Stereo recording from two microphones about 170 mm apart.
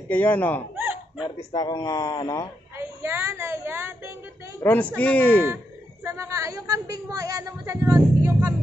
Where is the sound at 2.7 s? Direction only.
15° right (ahead or behind).